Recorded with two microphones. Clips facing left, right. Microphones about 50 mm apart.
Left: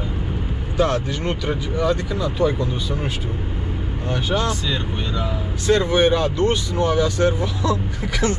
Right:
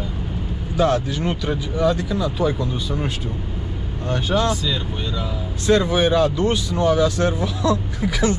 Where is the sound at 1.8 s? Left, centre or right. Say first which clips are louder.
Right 2 dB; left.